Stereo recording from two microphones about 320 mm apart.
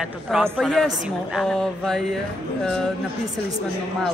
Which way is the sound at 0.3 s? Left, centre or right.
Centre.